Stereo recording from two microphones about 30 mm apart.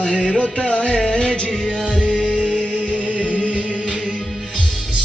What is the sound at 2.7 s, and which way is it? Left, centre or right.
Music, right.